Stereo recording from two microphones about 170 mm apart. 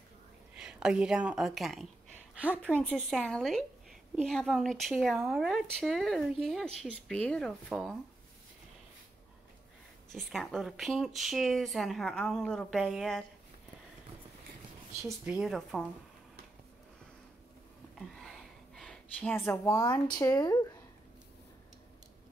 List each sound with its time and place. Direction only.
0.6 s a woman's voice: 5° right (ahead or behind)
10.1 s speech: centre (ahead or behind)
15.0 s speech: 5° right (ahead or behind)
18.8 s speech: 5° left (ahead or behind)